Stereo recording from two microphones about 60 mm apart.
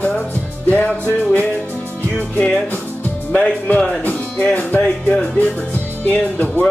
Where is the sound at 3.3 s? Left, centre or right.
Left.